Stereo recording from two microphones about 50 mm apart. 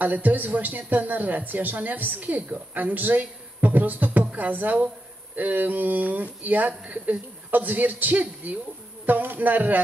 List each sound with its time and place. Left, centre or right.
0.0 s speech: right